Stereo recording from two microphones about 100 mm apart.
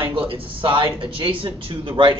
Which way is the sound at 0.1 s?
60° right (ahead or behind).